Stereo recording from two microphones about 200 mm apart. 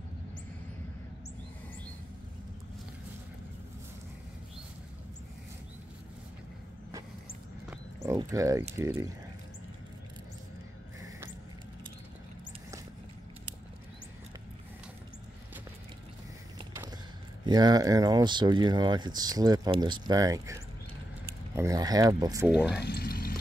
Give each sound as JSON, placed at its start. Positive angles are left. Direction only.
{"t": 8.0, "sound": "speech", "side_deg": -15}
{"t": 17.5, "sound": "speech", "side_deg": -20}
{"t": 21.5, "sound": "speech", "side_deg": -15}
{"t": 22.8, "sound": "speech", "side_deg": 55}